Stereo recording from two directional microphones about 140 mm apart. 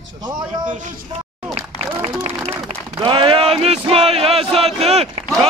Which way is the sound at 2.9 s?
35° right (ahead or behind).